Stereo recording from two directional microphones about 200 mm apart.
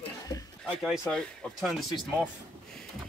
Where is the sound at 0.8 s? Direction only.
5° right (ahead or behind).